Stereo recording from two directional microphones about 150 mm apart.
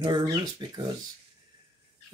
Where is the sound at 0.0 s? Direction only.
30° right (ahead or behind).